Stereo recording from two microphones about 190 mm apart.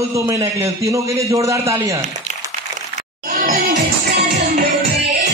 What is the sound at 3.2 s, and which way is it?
Music, 45° right (ahead or behind).